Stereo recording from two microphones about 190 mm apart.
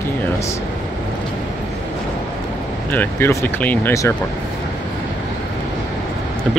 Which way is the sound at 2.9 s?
10° left (ahead or behind).